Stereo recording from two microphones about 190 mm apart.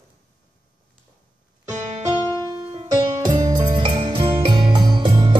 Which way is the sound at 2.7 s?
20° right (ahead or behind).